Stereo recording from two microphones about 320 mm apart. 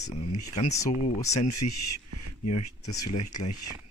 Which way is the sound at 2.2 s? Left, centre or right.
Left.